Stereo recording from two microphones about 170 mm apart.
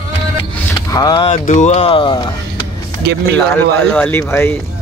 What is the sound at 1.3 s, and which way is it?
Speech, 45° left (ahead or behind).